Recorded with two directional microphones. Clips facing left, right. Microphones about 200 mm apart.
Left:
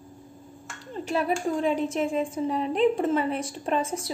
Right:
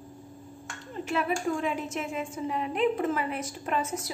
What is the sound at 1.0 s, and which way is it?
A woman's voice, 35° left (ahead or behind).